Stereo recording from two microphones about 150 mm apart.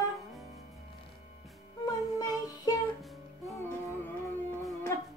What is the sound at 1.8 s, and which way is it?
Music, 25° left (ahead or behind).